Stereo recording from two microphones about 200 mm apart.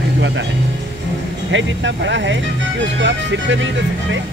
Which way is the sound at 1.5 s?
65° right (ahead or behind).